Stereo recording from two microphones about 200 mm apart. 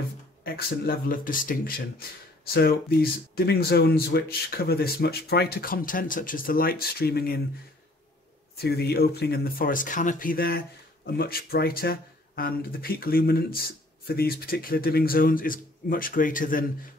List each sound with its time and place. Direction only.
0.4 s speech: 50° left (ahead or behind)
8.5 s speech: 55° left (ahead or behind)